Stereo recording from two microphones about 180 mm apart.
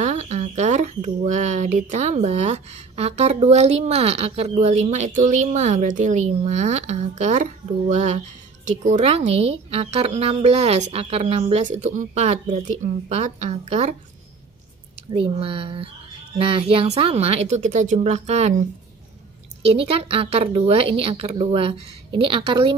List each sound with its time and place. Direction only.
0.0 s speech: 40° right (ahead or behind)
15.0 s speech: 30° right (ahead or behind)